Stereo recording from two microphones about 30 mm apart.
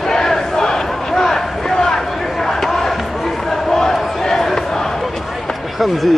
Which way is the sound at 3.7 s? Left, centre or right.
Centre.